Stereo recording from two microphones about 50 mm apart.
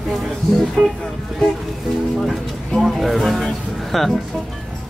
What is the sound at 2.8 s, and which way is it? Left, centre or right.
Music, centre.